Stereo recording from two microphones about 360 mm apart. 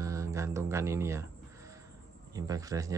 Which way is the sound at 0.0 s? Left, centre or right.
Centre.